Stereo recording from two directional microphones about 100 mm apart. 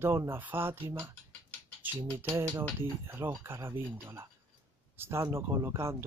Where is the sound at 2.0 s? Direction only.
20° right (ahead or behind).